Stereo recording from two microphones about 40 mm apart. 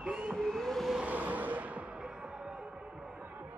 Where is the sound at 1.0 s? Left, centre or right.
Right.